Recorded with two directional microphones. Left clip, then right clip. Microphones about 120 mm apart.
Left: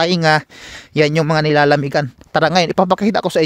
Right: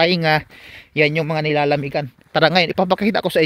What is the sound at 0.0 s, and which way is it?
Speech, 45° left (ahead or behind).